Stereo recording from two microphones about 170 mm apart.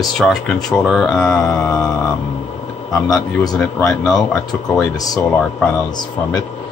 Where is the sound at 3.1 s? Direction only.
20° left (ahead or behind).